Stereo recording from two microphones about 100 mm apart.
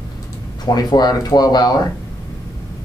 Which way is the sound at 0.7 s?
40° left (ahead or behind).